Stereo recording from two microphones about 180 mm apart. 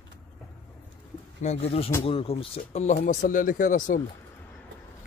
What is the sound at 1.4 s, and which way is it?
Speech, 35° left (ahead or behind).